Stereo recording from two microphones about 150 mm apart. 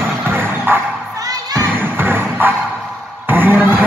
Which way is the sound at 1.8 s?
15° right (ahead or behind).